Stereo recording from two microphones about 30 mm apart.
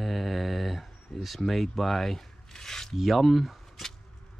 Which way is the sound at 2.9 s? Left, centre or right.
Centre.